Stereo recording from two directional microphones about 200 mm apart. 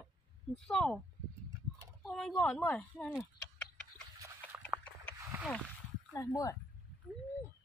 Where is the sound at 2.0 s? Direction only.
Centre (ahead or behind).